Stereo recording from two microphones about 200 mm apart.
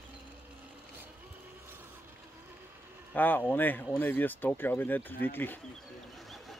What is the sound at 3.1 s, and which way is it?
Speech, 10° left (ahead or behind).